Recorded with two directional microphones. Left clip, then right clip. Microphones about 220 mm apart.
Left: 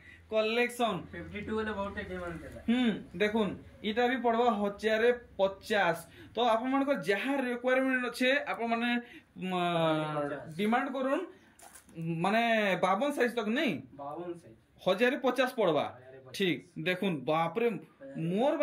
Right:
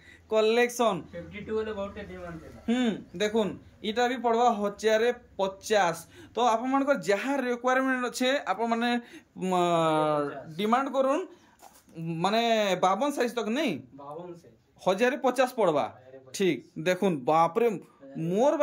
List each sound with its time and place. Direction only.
0.3 s a man's voice: 15° right (ahead or behind)
2.6 s a man's voice: 15° right (ahead or behind)
14.8 s a man's voice: 10° right (ahead or behind)